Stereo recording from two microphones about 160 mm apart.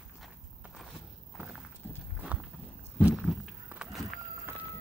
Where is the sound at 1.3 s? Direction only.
10° right (ahead or behind).